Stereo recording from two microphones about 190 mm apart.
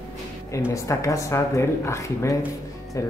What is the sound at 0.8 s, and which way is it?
Speech, 15° left (ahead or behind).